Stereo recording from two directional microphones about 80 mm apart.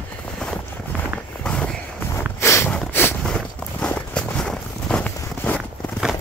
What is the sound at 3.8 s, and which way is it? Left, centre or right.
Walk, centre.